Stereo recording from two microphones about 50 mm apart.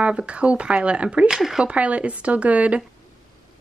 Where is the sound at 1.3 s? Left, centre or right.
Centre.